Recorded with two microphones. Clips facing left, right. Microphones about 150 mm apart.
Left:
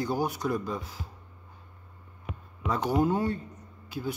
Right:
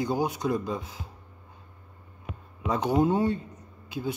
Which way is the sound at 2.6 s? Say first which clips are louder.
Right 2 dB; 20° right (ahead or behind).